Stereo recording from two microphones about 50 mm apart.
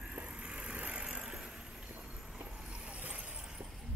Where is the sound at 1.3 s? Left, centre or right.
Centre.